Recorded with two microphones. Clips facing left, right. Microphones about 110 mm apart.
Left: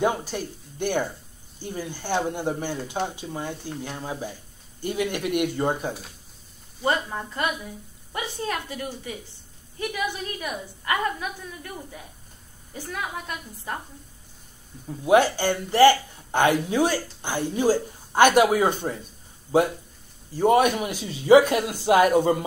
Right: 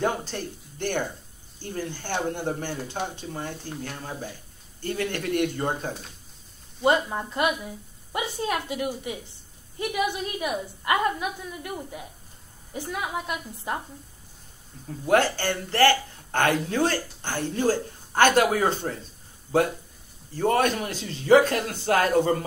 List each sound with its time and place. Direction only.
0.0 s speech: 10° left (ahead or behind)
6.8 s a woman's voice: 20° right (ahead or behind)
14.9 s speech: 15° left (ahead or behind)
20.3 s speech: 15° left (ahead or behind)